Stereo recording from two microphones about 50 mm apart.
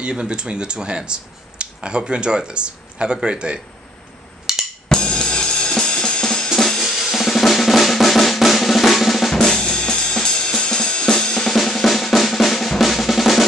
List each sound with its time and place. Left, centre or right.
0.0 s speech: centre
4.8 s drum kit: centre
6.8 s drum: centre